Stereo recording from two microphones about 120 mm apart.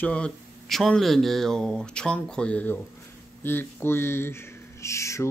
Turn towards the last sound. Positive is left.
turn(degrees=25)  # may be behind; listen again after turning